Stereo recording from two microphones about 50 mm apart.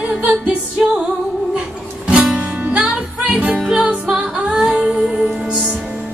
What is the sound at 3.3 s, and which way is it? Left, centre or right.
Music, right.